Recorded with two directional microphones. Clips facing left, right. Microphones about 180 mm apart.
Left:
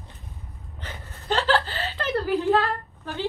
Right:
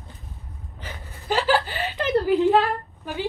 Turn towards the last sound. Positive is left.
turn(degrees=-15)  # may be behind; listen again after turning